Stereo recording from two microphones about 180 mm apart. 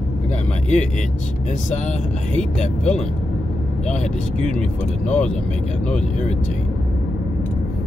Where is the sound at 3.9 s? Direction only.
40° left (ahead or behind).